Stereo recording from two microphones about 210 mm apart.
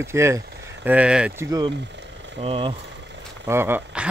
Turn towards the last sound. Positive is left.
turn(degrees=-10)  # may be behind; listen again after turning